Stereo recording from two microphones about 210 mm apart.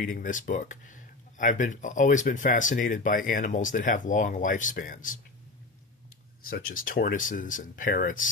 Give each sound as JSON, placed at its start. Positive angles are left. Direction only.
{"t": 0.0, "sound": "speech", "side_deg": 40}
{"t": 6.7, "sound": "speech", "side_deg": 40}